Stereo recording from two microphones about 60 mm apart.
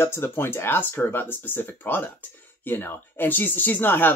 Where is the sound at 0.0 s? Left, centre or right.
Left.